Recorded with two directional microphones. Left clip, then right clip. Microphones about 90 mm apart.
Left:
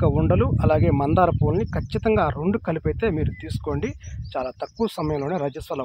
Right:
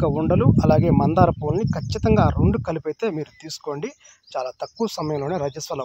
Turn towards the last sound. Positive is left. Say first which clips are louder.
# even
turn(degrees=-45)  # may be behind; listen again after turning